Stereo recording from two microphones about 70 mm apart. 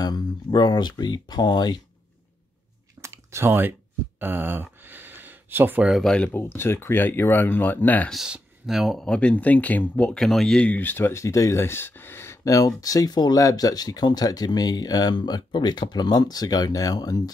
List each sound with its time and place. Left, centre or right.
0.0 s speech: left
3.0 s chewing: right
4.2 s a sound: right
6.0 s speech: centre
6.3 s speech: left
8.3 s speech: centre
9.0 s speech: centre
10.1 s speech: centre
10.7 s speech: left
12.5 s speech: left